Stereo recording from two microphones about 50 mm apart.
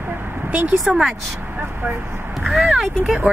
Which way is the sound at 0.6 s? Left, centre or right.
Right.